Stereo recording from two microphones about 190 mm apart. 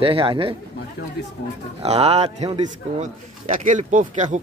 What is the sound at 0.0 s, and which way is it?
Speech, 30° right (ahead or behind).